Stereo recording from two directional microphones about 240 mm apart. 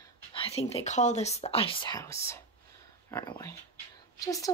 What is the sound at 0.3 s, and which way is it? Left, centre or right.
A woman's voice, left.